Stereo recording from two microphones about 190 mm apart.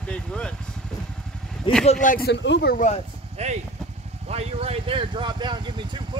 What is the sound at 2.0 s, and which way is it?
Speech, 45° left (ahead or behind).